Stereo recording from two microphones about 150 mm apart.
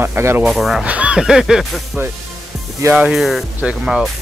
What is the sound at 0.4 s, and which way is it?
Speech, centre (ahead or behind).